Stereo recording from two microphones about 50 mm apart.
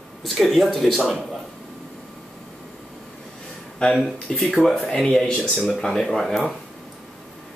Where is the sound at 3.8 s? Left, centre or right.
Left.